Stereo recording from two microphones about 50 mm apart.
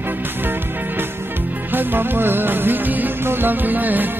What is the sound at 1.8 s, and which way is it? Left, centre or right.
Music, right.